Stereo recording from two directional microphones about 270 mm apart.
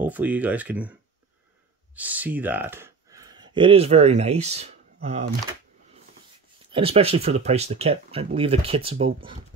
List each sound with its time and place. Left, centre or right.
0.0 s speech: centre
2.0 s speech: centre; by 5.2 s right
6.7 s speech: right